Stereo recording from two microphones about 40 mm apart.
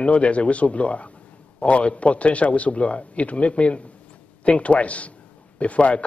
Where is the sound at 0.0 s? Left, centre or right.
Left.